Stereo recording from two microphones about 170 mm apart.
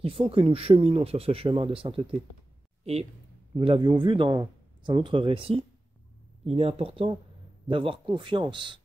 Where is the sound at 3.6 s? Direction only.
30° right (ahead or behind).